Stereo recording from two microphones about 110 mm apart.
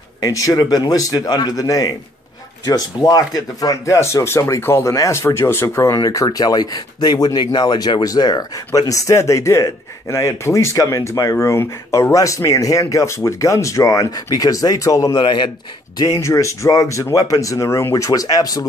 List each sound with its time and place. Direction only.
0.2 s speech: 30° left (ahead or behind)
15.1 s a man's voice: 45° left (ahead or behind)
16.2 s speech: 25° left (ahead or behind)